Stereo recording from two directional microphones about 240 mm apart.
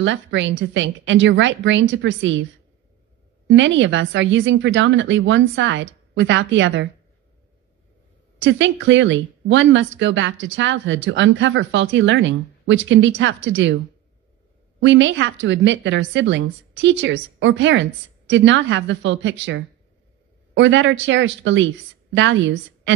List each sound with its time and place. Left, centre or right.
0.0 s speech: right
3.4 s speech: right
8.5 s speech: right
14.8 s speech: right